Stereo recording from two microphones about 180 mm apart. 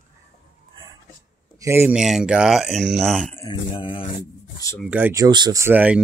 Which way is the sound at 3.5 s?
30° left (ahead or behind).